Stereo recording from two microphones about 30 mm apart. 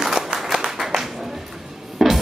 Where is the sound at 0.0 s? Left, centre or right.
Centre.